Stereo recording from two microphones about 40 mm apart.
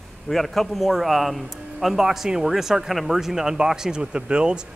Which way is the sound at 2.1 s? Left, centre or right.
Centre.